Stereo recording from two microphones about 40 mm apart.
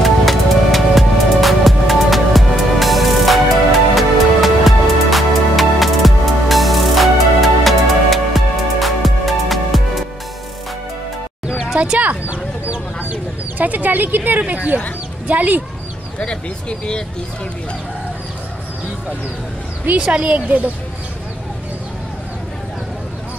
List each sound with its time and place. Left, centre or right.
0.0 s music: centre
11.8 s chicken: right
14.4 s speech: right
16.2 s speech: left
20.0 s speech: right